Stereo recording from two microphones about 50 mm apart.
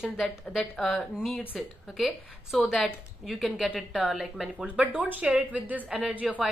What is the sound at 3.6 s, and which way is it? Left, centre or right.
Speech, centre.